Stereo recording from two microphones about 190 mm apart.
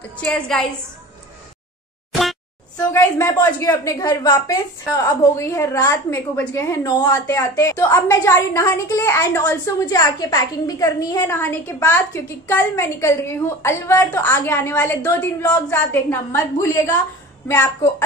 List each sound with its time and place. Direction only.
0.2 s a woman's voice: 5° left (ahead or behind)
2.9 s a woman's voice: 15° left (ahead or behind)